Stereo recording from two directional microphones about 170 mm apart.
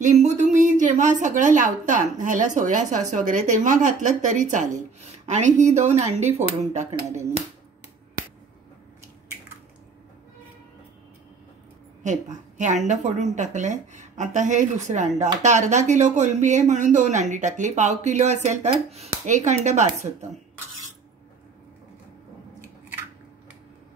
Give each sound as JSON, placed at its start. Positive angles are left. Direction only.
{"t": 0.0, "sound": "a woman's voice", "side_deg": -45}
{"t": 12.0, "sound": "a woman's voice", "side_deg": -45}